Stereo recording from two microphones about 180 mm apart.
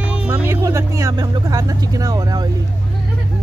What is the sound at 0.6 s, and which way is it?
Vehicle, 20° right (ahead or behind).